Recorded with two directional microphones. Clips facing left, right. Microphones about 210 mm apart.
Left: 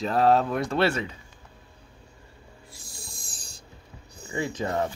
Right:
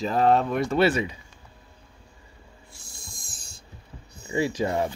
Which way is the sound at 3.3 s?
35° left (ahead or behind).